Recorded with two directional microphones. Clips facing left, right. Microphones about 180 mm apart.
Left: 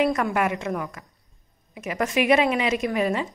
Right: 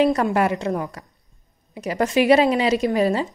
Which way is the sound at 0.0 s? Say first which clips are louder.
Right 4 dB; 30° right (ahead or behind).